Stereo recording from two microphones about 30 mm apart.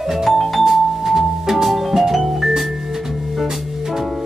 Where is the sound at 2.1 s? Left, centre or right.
Centre.